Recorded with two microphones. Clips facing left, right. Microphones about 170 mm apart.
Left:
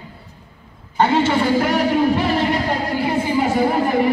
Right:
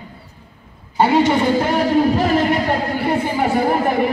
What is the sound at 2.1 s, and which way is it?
Music, 45° right (ahead or behind).